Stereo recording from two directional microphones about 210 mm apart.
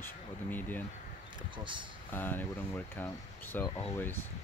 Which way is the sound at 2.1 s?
10° left (ahead or behind).